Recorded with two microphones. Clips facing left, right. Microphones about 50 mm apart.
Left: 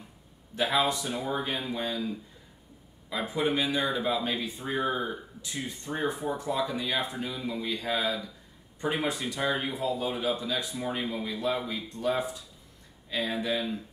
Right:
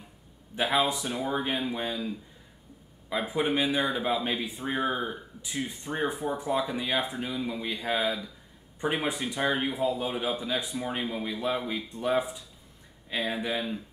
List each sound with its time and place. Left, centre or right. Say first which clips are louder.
0.7 s speech: right 1 dB; centre
3.1 s speech: right 1 dB; centre
6.5 s speech: right 2 dB; right